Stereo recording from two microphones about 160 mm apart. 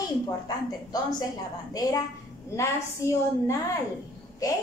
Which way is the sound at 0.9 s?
25° left (ahead or behind).